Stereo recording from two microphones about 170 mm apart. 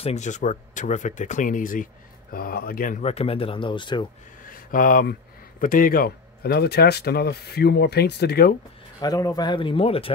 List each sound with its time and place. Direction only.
0.0 s speech: 40° left (ahead or behind)
3.0 s speech: 35° left (ahead or behind)
4.4 s a sound: 55° left (ahead or behind)
5.6 s speech: 55° left (ahead or behind)
9.0 s speech: 20° left (ahead or behind)